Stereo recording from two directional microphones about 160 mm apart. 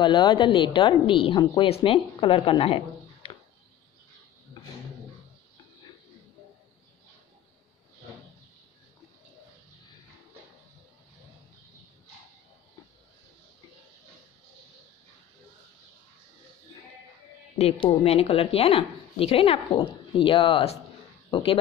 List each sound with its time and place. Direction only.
0.0 s a woman's voice: 30° left (ahead or behind)
17.6 s a woman's voice: 35° left (ahead or behind)